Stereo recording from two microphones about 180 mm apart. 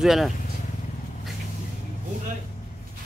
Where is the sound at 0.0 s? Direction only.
Centre (ahead or behind).